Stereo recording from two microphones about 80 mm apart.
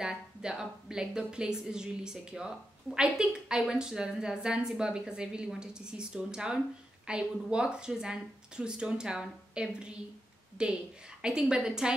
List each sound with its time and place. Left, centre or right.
0.0 s a woman's voice: centre